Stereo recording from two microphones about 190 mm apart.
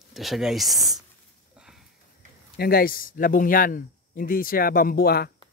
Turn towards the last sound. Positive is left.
turn(degrees=55)  # may be behind; listen again after turning